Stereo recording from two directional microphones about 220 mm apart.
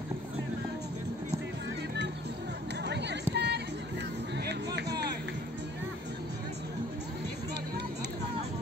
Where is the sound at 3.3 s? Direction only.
50° right (ahead or behind).